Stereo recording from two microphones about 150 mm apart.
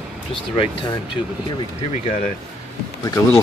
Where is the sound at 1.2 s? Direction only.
30° left (ahead or behind).